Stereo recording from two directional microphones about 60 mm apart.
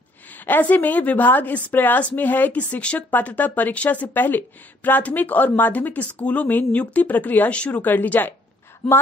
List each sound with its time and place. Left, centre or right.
0.3 s speech: left